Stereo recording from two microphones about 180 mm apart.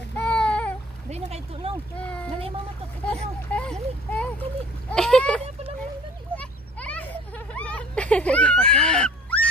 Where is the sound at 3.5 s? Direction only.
5° left (ahead or behind).